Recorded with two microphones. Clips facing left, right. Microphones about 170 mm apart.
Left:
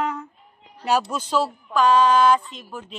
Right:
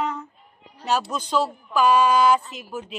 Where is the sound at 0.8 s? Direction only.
10° left (ahead or behind).